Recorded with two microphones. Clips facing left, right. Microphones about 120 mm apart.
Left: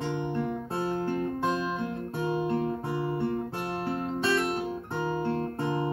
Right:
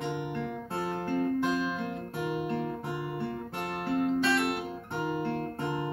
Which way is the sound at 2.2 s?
25° left (ahead or behind).